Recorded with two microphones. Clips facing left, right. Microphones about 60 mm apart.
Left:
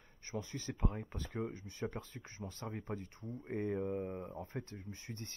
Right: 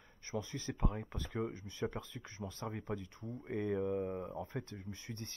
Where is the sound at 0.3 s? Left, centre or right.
Right.